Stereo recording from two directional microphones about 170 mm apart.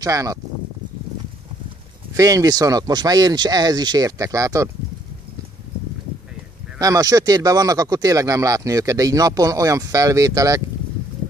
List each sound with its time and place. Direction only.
0.0 s speech: 20° right (ahead or behind)
2.1 s speech: 20° right (ahead or behind)
6.8 s speech: 20° right (ahead or behind)